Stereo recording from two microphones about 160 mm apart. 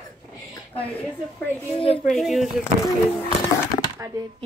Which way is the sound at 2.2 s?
Centre (ahead or behind).